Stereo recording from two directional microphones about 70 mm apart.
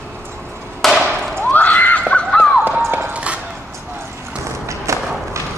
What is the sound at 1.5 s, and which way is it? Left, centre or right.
Screaming, left.